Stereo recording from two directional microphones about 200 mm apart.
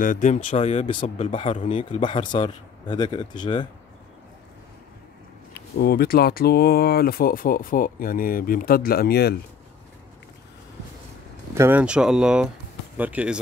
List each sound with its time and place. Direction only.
0.0 s a man's voice: 40° left (ahead or behind); by 3.6 s 20° left (ahead or behind)
5.5 s speech: 50° left (ahead or behind)
11.5 s speech: 10° right (ahead or behind)